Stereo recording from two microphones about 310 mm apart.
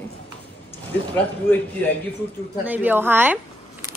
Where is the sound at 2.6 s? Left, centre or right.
Centre.